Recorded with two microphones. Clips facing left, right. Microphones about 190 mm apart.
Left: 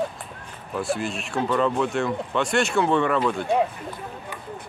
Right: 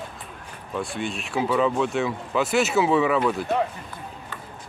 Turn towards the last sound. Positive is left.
turn(degrees=-5)  # may be behind; listen again after turning